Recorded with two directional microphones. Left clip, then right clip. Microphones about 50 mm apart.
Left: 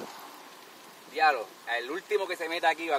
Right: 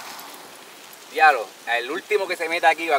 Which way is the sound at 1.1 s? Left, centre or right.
Left.